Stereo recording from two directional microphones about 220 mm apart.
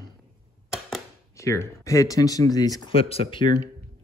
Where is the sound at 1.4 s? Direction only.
15° left (ahead or behind).